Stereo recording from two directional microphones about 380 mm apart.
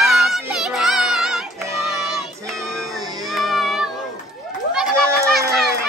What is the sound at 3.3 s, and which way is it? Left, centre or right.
Child singing, centre.